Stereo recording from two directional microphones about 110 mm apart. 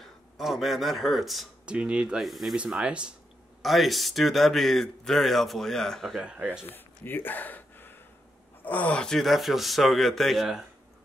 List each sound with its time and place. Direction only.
0.0 s a man's voice: centre (ahead or behind)
6.2 s speech: 10° right (ahead or behind)
6.7 s a sound: 20° left (ahead or behind)
8.6 s a man's voice: 15° left (ahead or behind)